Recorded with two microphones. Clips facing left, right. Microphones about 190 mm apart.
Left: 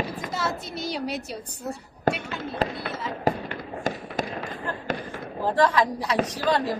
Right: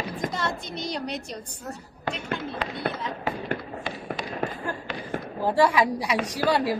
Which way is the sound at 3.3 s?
40° left (ahead or behind).